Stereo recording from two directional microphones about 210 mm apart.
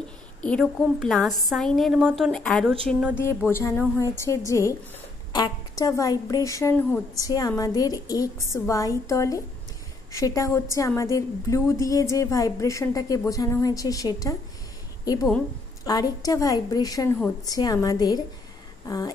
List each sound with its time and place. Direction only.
0.4 s a woman's voice: 5° left (ahead or behind)
3.4 s a woman's voice: 10° left (ahead or behind)
15.8 s a woman's voice: 20° left (ahead or behind)